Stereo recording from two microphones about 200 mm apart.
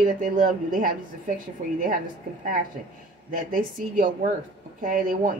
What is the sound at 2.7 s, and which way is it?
Speech, 40° right (ahead or behind).